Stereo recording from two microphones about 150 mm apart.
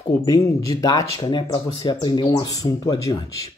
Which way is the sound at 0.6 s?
20° left (ahead or behind).